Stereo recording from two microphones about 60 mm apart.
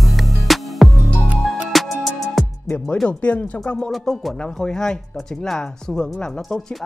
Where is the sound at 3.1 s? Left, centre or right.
Left.